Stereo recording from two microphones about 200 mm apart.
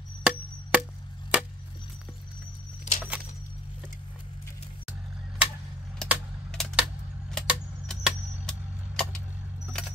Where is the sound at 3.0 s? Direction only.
Centre (ahead or behind).